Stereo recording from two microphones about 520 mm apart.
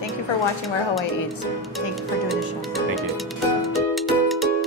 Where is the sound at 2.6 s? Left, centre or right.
Centre.